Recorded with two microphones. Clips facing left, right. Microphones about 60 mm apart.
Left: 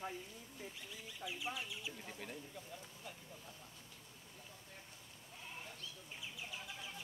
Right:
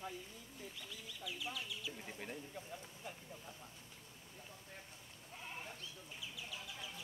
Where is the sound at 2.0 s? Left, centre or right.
Centre.